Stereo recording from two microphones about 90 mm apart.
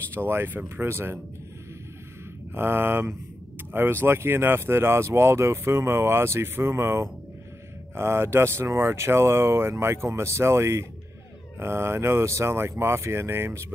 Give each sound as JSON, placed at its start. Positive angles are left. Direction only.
{"t": 0.1, "sound": "speech", "side_deg": -25}
{"t": 2.5, "sound": "speech", "side_deg": -25}